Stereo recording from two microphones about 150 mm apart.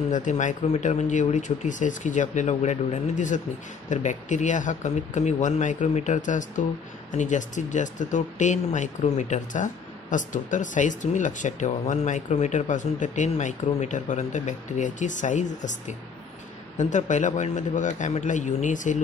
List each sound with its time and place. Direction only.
0.1 s speech: 55° left (ahead or behind)